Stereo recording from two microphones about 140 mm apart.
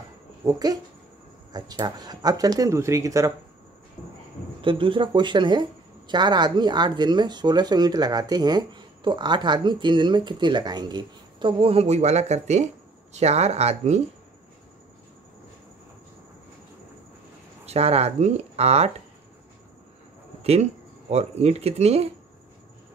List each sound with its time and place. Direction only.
0.5 s speech: 25° right (ahead or behind)
4.6 s speech: 40° right (ahead or behind)
17.6 s speech: 45° right (ahead or behind)
20.5 s speech: 45° right (ahead or behind)